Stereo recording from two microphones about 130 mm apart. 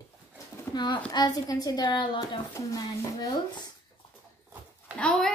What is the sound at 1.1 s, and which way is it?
A woman's voice, 30° left (ahead or behind).